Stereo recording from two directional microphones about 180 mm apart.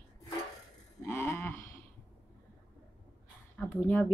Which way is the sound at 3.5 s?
10° left (ahead or behind).